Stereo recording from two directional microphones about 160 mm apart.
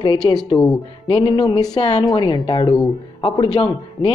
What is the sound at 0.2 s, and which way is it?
Speech, 30° left (ahead or behind).